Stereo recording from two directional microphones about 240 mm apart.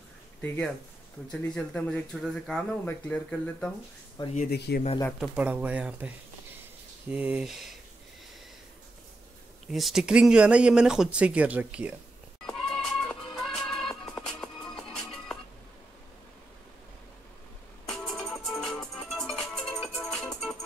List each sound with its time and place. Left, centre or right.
0.4 s speech: centre
4.2 s speech: left
4.5 s speech: left
5.2 s speech: centre
9.7 s speech: centre
12.4 s music: centre
17.8 s music: centre